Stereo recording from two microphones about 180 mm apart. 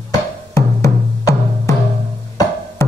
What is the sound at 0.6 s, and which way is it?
Music, 15° left (ahead or behind).